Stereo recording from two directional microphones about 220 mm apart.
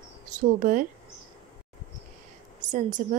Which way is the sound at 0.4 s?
35° right (ahead or behind).